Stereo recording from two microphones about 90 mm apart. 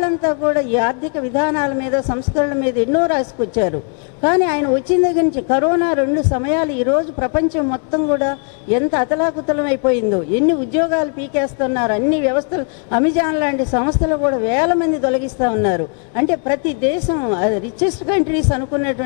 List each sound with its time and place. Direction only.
0.0 s a woman's voice: 20° left (ahead or behind)